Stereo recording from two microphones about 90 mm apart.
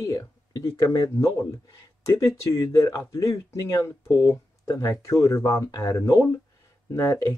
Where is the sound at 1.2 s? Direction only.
40° left (ahead or behind).